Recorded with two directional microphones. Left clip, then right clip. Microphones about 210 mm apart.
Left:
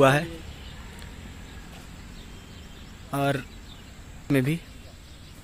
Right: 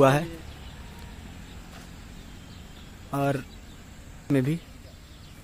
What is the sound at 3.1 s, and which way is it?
Speech, 5° right (ahead or behind).